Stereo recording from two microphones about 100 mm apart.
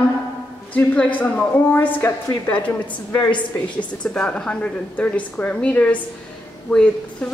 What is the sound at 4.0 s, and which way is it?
A woman's voice, 10° left (ahead or behind).